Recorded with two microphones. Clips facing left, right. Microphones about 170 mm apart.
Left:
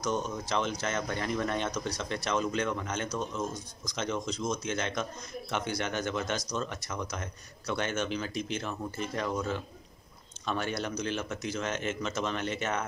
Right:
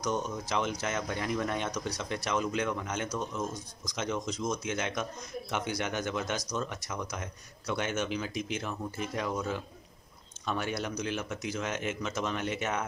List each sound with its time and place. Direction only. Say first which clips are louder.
0.0 s speech: left 1 dB; 15° right (ahead or behind)